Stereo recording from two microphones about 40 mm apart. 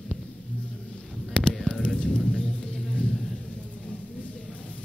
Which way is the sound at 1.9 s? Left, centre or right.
Centre.